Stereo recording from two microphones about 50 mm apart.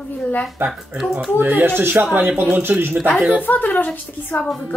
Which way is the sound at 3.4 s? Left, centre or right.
Left.